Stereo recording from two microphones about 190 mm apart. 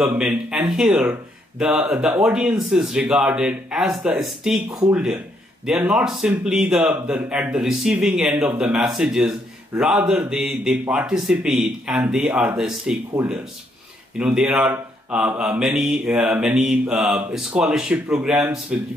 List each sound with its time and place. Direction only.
0.0 s speech: 5° right (ahead or behind)
4.6 s speech: 20° right (ahead or behind)
4.9 s speech: 5° right (ahead or behind)